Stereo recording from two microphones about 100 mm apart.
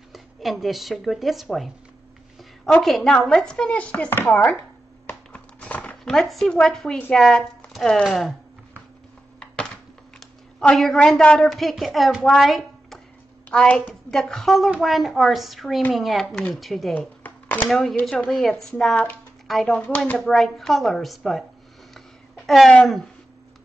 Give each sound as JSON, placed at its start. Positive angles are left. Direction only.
{"t": 0.1, "sound": "speech", "side_deg": 0}
{"t": 2.8, "sound": "speech", "side_deg": 5}
{"t": 4.2, "sound": "chopping", "side_deg": 20}
{"t": 5.0, "sound": "music", "side_deg": 15}
{"t": 6.0, "sound": "a woman's voice", "side_deg": 5}
{"t": 10.6, "sound": "a woman's voice", "side_deg": 5}
{"t": 12.3, "sound": "a sound", "side_deg": 0}
{"t": 13.5, "sound": "a woman's voice", "side_deg": 10}
{"t": 17.2, "sound": "a sound", "side_deg": 15}
{"t": 17.6, "sound": "a woman's voice", "side_deg": 5}
{"t": 19.4, "sound": "a sound", "side_deg": 0}
{"t": 19.7, "sound": "speech", "side_deg": 15}
{"t": 20.2, "sound": "a woman's voice", "side_deg": 0}